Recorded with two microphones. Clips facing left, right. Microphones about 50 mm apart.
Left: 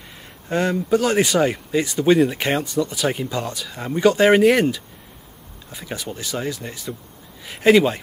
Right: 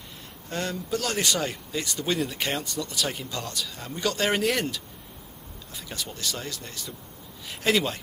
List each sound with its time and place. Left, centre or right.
0.5 s speech: left